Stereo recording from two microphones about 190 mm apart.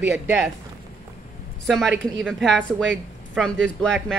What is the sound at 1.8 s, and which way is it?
Speech, 70° right (ahead or behind).